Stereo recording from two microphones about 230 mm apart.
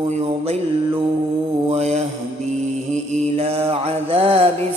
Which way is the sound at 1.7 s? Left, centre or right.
Right.